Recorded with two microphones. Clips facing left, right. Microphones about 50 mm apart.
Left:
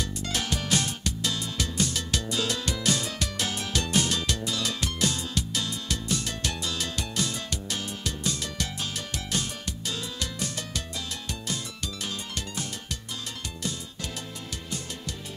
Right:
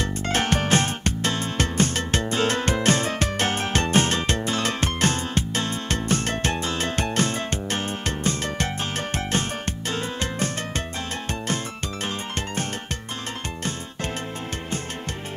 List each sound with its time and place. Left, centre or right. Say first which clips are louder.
0.0 s music: right 7 dB; right